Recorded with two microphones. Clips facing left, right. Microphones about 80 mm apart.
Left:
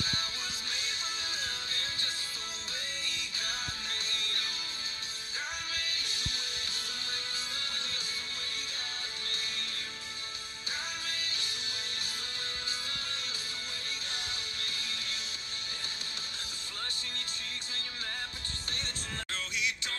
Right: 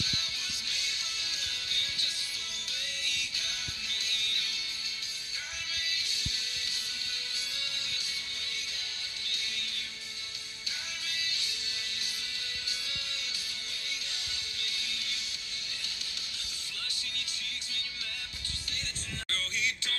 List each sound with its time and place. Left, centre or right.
0.0 s music: left
3.1 s music: left
5.8 s music: left
11.1 s music: left
14.6 s music: left
19.2 s music: left